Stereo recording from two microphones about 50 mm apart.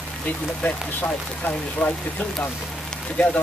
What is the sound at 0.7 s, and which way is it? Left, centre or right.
Speech, left.